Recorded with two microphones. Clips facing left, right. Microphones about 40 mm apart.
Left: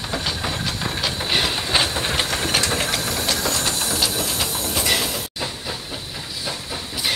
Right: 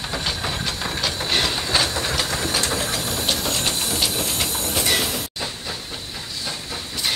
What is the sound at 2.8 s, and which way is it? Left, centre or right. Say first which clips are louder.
Vehicle: left 2 dB; left.